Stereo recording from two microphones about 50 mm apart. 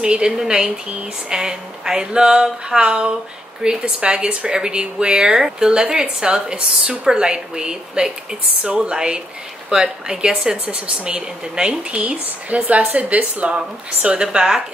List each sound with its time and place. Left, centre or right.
0.0 s speech: centre